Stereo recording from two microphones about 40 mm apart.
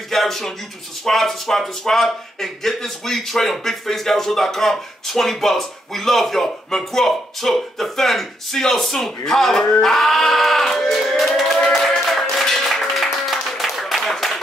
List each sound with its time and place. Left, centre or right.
0.1 s speech: centre
9.7 s a sound: centre
12.1 s music: centre
13.1 s applause: centre